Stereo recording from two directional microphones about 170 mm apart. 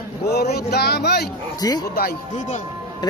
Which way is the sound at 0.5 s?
70° left (ahead or behind).